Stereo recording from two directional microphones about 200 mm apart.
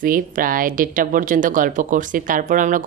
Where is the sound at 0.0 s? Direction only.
45° right (ahead or behind).